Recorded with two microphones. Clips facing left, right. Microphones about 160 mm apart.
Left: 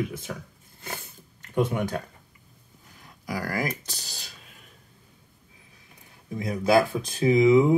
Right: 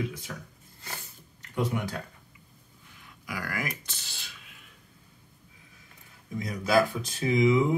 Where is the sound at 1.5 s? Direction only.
55° left (ahead or behind).